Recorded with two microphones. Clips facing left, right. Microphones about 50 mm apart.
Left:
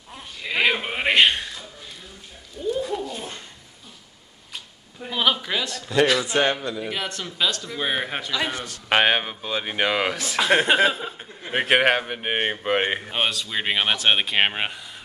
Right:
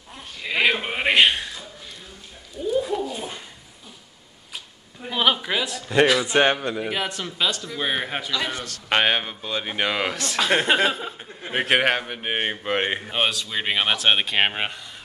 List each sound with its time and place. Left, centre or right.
0.1 s a sound: centre
2.6 s bird: centre
5.0 s a sound: centre
6.2 s a man's voice: right
6.8 s a man's voice: centre
8.6 s a man's voice: centre
8.9 s a man's voice: centre